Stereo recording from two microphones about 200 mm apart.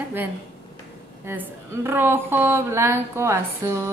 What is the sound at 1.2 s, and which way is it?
A woman's voice, 10° right (ahead or behind).